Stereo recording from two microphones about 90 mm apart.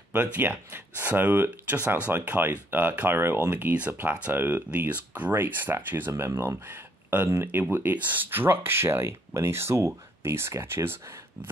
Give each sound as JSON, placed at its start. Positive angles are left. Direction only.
{"t": 0.1, "sound": "speech", "side_deg": -20}